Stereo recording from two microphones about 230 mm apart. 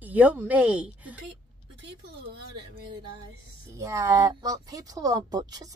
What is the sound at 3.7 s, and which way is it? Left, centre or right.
A woman's voice, centre.